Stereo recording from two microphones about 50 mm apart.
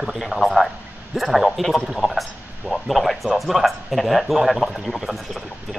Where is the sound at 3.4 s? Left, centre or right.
Centre.